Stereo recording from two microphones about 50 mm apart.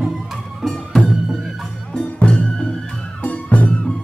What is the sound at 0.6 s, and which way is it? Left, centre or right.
Music, centre.